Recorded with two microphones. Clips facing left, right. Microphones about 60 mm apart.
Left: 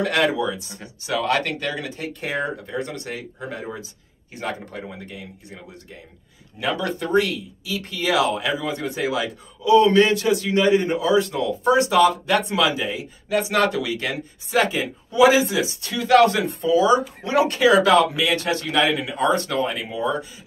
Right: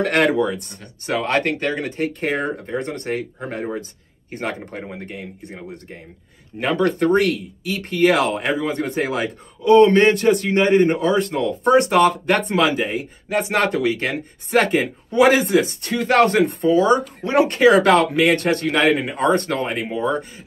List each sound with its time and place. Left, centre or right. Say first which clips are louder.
0.0 s speech: right 3 dB; right
1.0 s a man's voice: right 2 dB; right